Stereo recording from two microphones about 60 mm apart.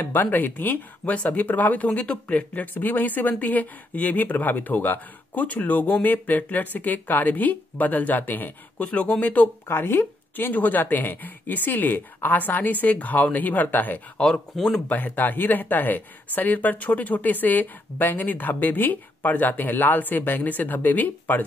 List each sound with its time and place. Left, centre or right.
0.0 s speech: left
8.8 s speech: left
9.7 s speech: left
14.2 s speech: centre
14.9 s speech: left